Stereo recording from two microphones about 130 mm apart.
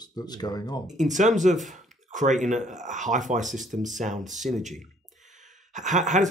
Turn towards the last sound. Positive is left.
turn(degrees=-70)  # may be behind; listen again after turning